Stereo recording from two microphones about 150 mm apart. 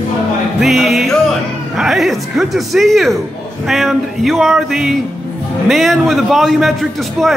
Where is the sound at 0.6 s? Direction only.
Centre (ahead or behind).